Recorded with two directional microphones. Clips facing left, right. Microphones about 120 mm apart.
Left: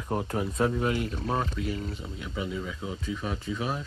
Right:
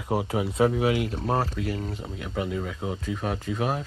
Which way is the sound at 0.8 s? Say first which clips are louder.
Right 4 dB; 90° right.